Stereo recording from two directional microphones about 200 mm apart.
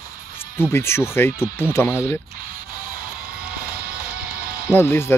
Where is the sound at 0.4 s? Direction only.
10° left (ahead or behind).